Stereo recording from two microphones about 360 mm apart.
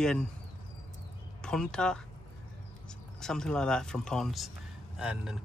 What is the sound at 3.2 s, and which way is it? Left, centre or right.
Speech, centre.